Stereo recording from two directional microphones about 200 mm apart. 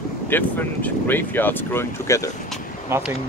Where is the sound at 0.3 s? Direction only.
10° left (ahead or behind).